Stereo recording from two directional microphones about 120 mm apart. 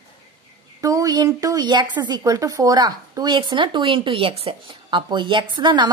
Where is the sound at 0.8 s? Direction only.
30° right (ahead or behind).